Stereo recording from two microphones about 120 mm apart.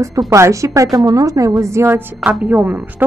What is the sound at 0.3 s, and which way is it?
A woman's voice, 25° right (ahead or behind).